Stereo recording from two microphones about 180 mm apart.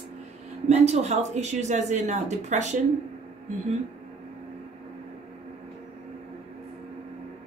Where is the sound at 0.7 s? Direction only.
35° right (ahead or behind).